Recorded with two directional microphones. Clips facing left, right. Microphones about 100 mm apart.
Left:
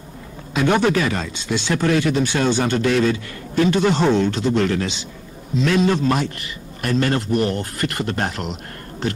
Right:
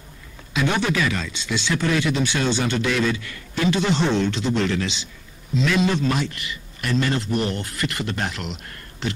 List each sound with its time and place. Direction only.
0.5 s speech: 45° left (ahead or behind)